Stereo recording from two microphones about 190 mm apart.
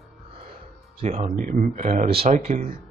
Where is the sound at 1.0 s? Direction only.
30° right (ahead or behind).